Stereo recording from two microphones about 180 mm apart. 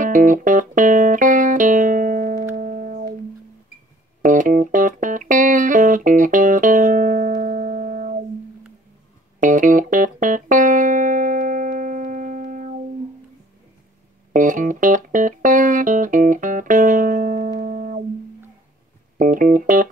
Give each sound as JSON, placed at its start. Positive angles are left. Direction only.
{"t": 0.0, "sound": "music", "side_deg": -45}
{"t": 4.2, "sound": "music", "side_deg": -45}
{"t": 9.4, "sound": "music", "side_deg": -45}
{"t": 14.3, "sound": "music", "side_deg": -45}
{"t": 19.1, "sound": "music", "side_deg": -50}